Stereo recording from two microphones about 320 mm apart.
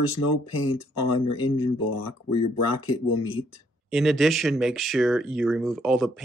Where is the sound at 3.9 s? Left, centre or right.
Centre.